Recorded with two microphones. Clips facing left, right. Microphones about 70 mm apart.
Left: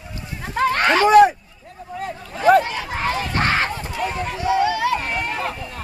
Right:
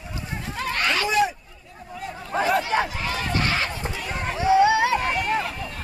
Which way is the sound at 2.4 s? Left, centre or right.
Left.